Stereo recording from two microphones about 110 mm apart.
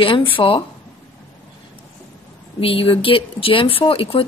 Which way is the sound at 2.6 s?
55° left (ahead or behind).